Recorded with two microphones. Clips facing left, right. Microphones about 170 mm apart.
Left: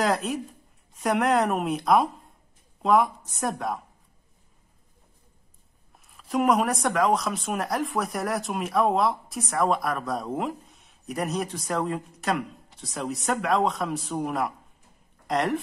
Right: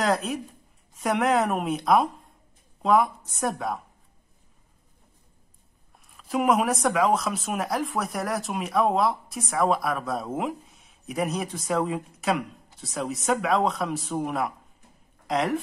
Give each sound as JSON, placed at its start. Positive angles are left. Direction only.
{"t": 0.0, "sound": "a woman's voice", "side_deg": 0}
{"t": 6.1, "sound": "speech", "side_deg": 0}